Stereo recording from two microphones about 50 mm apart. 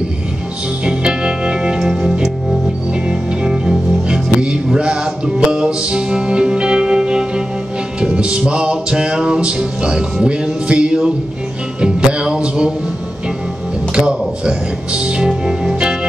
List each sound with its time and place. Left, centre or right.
0.8 s music: centre
2.9 s music: centre
13.9 s music: right